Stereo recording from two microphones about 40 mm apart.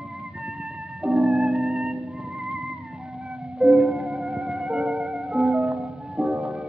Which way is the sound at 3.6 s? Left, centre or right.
Centre.